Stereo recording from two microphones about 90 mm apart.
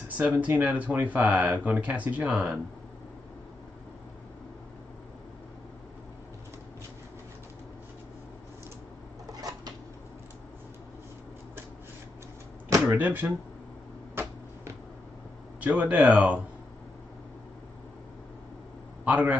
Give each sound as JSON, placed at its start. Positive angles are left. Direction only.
{"t": 0.2, "sound": "speech", "side_deg": -15}
{"t": 9.3, "sound": "a sound", "side_deg": -45}
{"t": 12.8, "sound": "speech", "side_deg": -20}
{"t": 15.6, "sound": "speech", "side_deg": -15}
{"t": 19.0, "sound": "speech", "side_deg": -15}